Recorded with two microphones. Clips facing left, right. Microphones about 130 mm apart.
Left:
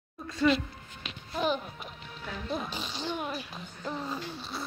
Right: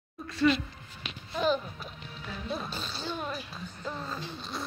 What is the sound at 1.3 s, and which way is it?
Music, 15° left (ahead or behind).